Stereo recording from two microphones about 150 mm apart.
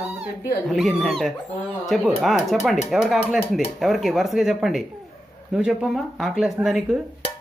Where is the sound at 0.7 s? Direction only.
Centre (ahead or behind).